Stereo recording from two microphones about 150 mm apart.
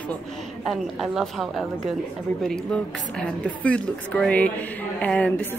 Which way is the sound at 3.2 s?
5° left (ahead or behind).